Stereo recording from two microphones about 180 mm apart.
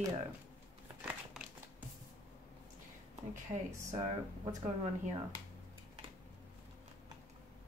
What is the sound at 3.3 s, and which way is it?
Speech, 45° right (ahead or behind).